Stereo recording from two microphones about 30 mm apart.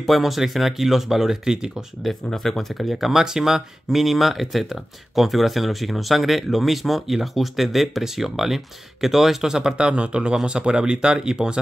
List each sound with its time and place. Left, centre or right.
0.0 s speech: centre
2.2 s speech: centre
2.8 s speech: centre
9.8 s speech: right